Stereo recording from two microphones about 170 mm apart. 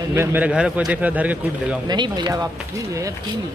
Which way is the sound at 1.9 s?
25° right (ahead or behind).